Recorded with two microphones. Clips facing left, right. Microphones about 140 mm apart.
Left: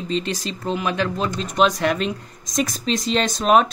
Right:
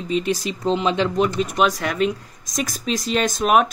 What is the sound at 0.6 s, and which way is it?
Speech, 20° right (ahead or behind).